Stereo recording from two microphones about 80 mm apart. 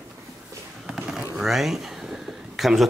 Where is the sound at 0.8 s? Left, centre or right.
Centre.